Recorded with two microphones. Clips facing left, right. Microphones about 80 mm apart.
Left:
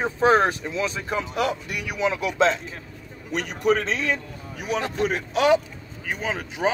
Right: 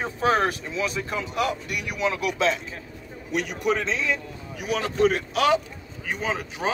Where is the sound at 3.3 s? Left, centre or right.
Left.